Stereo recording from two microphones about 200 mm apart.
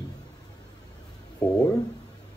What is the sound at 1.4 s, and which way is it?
Speech, 20° left (ahead or behind).